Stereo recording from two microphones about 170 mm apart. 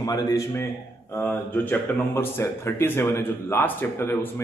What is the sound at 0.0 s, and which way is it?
A man's voice, 20° left (ahead or behind).